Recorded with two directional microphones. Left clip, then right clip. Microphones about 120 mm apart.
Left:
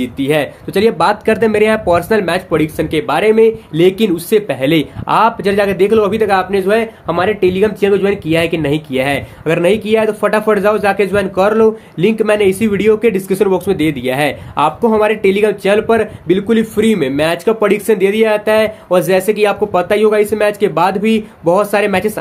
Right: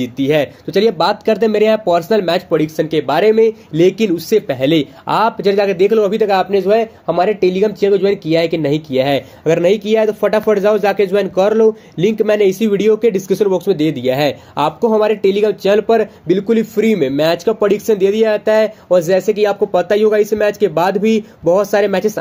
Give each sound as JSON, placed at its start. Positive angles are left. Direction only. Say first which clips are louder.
{"t": 0.0, "sound": "speech", "louder": "even", "side_deg": -40}
{"t": 7.1, "sound": "speech", "louder": "even", "side_deg": -40}